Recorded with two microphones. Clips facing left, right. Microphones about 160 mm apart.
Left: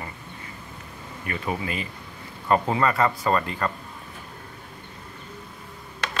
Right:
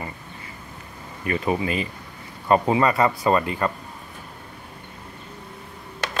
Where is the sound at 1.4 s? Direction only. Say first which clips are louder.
Right 4 dB; 20° right (ahead or behind).